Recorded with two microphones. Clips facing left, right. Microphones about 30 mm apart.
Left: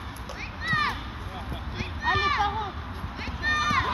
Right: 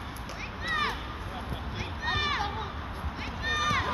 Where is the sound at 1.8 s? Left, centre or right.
Left.